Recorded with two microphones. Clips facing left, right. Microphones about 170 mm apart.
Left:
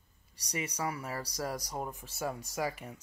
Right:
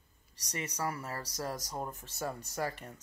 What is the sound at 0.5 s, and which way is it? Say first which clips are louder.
Speech: left 1 dB; 10° left (ahead or behind).